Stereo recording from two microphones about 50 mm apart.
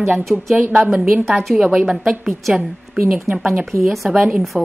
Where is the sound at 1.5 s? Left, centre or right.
Right.